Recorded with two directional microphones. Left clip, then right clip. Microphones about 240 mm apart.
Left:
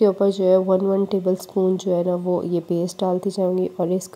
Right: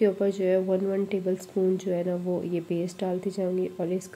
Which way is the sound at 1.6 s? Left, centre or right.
Left.